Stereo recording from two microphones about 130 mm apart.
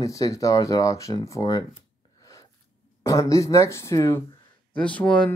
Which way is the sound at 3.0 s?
25° left (ahead or behind).